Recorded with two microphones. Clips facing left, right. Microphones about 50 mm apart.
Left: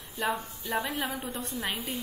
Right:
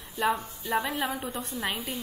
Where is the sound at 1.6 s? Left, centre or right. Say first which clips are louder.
Right 2 dB; right.